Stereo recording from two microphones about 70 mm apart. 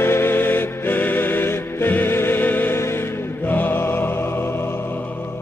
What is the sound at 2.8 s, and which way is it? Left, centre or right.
Music, left.